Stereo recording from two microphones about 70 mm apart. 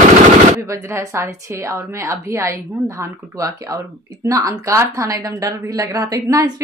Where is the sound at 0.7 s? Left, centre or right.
Right.